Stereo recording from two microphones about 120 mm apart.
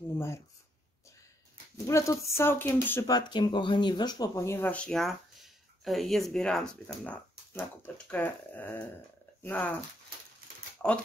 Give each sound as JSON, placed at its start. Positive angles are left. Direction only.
{"t": 1.9, "sound": "speech", "side_deg": 25}
{"t": 3.1, "sound": "speech", "side_deg": 35}
{"t": 4.6, "sound": "speech", "side_deg": 10}
{"t": 10.8, "sound": "speech", "side_deg": 10}